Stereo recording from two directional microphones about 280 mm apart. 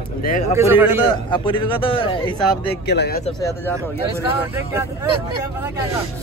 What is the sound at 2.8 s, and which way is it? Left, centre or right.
Speech, left.